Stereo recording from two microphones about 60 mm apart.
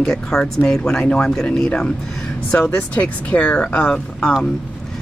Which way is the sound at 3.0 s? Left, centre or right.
Left.